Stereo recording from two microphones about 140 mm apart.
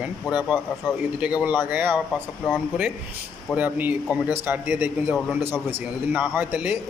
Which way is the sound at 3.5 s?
10° right (ahead or behind).